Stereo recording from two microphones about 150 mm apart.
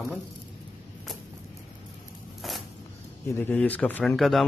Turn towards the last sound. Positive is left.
turn(degrees=0)  # may be behind; listen again after turning